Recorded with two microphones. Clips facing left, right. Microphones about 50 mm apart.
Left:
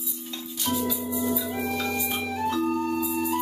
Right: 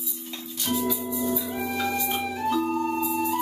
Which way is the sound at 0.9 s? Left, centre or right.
Centre.